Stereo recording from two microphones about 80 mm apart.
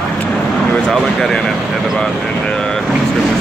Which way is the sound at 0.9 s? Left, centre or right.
Centre.